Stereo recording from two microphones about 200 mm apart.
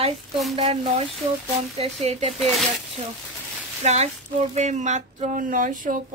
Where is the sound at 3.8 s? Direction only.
35° right (ahead or behind).